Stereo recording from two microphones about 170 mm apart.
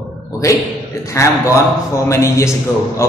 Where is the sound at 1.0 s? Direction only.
15° left (ahead or behind).